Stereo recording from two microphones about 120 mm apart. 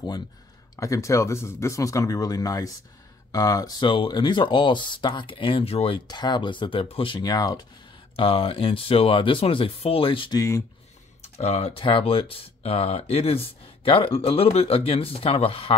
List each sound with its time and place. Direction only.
0.7 s speech: 25° left (ahead or behind); by 5.9 s 55° left (ahead or behind)
6.0 s speech: 35° left (ahead or behind)
7.2 s speech: 35° left (ahead or behind)
8.2 s speech: 50° left (ahead or behind)
10.3 s speech: 25° left (ahead or behind)
11.2 s speech: 65° left (ahead or behind)